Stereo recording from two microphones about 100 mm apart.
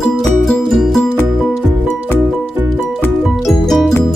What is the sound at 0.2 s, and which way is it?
Music, 5° left (ahead or behind).